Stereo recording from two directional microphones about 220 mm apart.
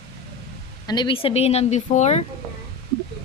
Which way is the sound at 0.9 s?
20° left (ahead or behind).